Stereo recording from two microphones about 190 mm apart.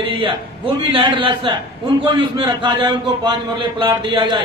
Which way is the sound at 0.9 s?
25° right (ahead or behind).